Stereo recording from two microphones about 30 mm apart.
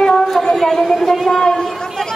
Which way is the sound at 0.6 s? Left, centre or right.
Centre.